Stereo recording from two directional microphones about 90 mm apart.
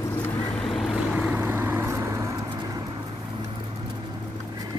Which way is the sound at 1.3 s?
25° right (ahead or behind).